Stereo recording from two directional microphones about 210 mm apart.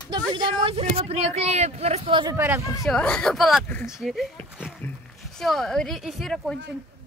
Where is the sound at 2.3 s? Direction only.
10° right (ahead or behind).